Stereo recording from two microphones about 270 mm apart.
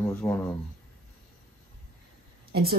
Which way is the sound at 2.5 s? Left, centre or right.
Right.